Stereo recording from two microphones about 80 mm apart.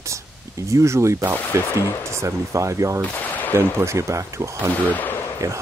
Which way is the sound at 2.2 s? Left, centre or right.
Right.